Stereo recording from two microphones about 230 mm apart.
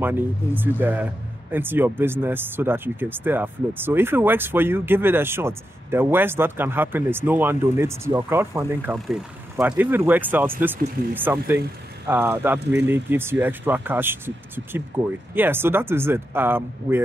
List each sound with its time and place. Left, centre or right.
0.0 s speech: centre